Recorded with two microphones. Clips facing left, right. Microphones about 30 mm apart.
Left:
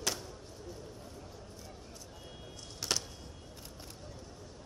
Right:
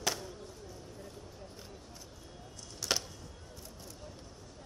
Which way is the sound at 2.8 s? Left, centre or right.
Centre.